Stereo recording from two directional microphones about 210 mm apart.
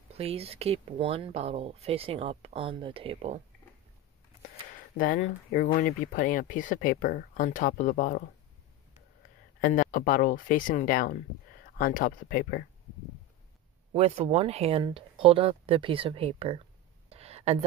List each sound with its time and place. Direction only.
0.1 s speech: 30° right (ahead or behind)
4.9 s speech: 40° left (ahead or behind)
9.6 s speech: 40° left (ahead or behind)
13.9 s speech: 30° right (ahead or behind)
17.1 s a sound: 30° right (ahead or behind)